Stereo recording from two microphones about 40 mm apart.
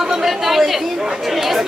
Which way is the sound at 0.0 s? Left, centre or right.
Centre.